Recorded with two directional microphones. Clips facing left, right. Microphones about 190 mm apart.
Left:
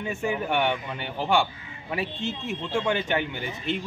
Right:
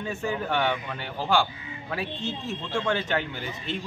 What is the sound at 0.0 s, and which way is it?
A man's voice, 15° left (ahead or behind).